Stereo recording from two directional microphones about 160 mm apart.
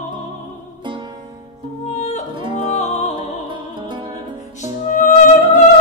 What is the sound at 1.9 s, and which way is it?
Yodeling, 45° left (ahead or behind).